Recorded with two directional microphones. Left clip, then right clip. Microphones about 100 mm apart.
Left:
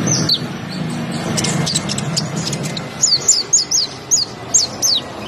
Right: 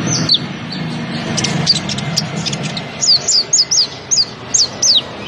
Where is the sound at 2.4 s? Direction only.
55° left (ahead or behind).